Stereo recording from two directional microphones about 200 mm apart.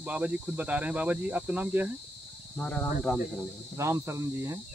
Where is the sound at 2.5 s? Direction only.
5° left (ahead or behind).